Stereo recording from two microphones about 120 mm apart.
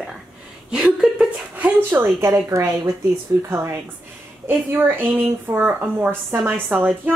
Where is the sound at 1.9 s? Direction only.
20° right (ahead or behind).